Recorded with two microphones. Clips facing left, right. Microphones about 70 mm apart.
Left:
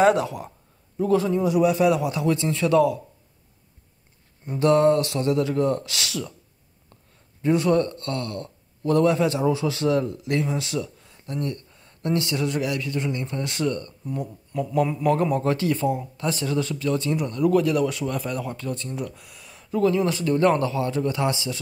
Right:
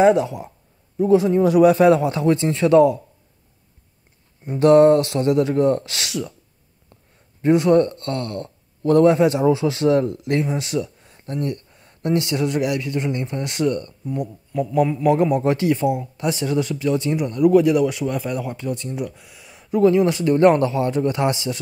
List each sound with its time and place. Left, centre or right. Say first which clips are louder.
0.1 s speech: right 4 dB; left
1.0 s a man's voice: right 5 dB; centre
1.4 s a man's voice: right 6 dB; right
4.5 s a man's voice: right 6 dB; right
7.4 s a man's voice: right 5 dB; right
14.1 s speech: right 4 dB; centre
15.4 s speech: right 4 dB; right
19.1 s a sound: right 1 dB; centre
20.2 s a man's voice: right 5 dB; right